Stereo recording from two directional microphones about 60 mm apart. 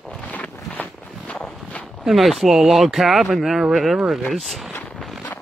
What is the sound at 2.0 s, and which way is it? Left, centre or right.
Speech, centre.